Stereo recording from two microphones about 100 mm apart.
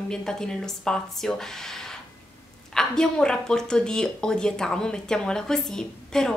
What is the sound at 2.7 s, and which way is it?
A woman's voice, 5° left (ahead or behind).